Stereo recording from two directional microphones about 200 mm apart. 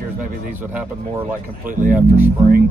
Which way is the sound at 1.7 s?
40° right (ahead or behind).